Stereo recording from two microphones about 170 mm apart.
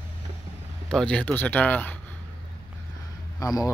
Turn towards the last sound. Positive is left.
turn(degrees=20)  # may be behind; listen again after turning